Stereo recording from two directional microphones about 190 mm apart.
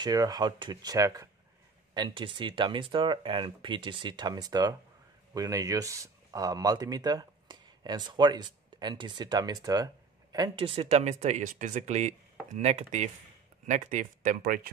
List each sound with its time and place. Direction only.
0.0 s speech: 20° right (ahead or behind); by 14.7 s 50° right (ahead or behind)